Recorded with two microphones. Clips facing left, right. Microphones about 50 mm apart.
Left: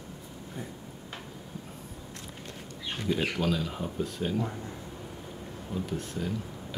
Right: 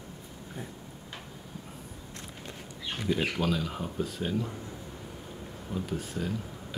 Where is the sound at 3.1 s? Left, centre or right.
Centre.